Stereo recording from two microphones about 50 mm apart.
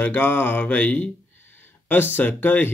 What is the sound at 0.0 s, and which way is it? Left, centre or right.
Speech, left.